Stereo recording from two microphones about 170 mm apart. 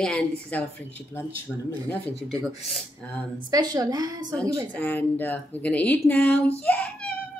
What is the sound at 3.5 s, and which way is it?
Speech, 25° right (ahead or behind).